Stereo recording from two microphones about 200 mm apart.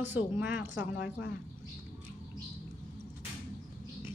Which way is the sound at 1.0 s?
65° left (ahead or behind).